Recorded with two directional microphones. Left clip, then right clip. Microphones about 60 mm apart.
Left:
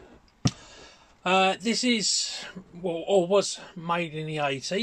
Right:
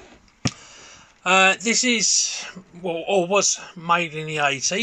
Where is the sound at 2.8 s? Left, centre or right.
Centre.